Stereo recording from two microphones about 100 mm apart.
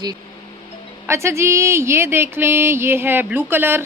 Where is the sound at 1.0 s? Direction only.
30° right (ahead or behind).